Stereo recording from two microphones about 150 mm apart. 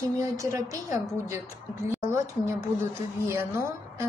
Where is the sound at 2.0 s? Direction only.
20° right (ahead or behind).